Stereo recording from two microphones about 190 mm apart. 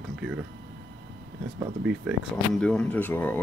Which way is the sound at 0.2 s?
5° right (ahead or behind).